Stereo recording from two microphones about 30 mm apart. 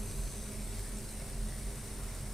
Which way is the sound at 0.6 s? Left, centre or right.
Centre.